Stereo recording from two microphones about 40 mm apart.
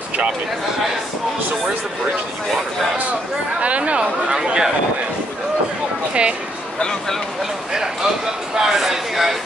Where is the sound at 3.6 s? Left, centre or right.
Right.